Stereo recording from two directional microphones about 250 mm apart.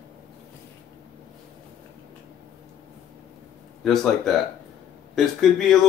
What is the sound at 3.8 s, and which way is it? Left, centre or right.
Speech, centre.